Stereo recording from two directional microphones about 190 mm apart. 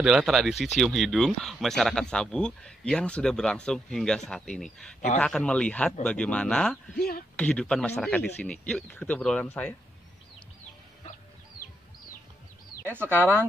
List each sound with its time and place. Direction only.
0.0 s speech: centre (ahead or behind)
7.0 s speech: 55° left (ahead or behind)
7.3 s speech: 5° left (ahead or behind)
13.1 s speech: 10° left (ahead or behind)